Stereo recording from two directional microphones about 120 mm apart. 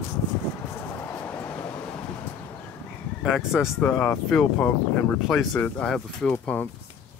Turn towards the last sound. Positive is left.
turn(degrees=10)  # may be behind; listen again after turning